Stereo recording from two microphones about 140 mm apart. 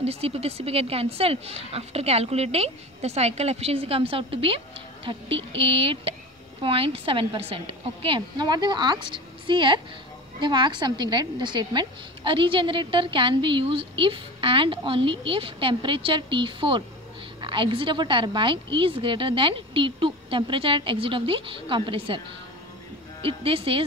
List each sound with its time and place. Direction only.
0.0 s a woman's voice: 45° right (ahead or behind)
23.2 s a woman's voice: 40° right (ahead or behind)